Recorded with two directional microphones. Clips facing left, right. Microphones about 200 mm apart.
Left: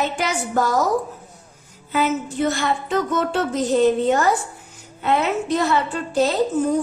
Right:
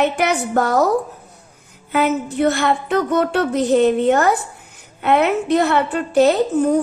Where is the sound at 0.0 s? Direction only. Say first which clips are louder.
Right 5 dB; 65° right (ahead or behind).